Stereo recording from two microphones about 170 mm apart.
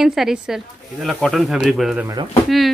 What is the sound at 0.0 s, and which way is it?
Speech, centre (ahead or behind).